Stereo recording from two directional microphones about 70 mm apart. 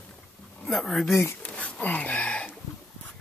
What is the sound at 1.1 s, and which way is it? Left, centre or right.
Speech, left.